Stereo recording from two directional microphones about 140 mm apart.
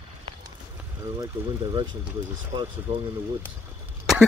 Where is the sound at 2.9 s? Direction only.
50° right (ahead or behind).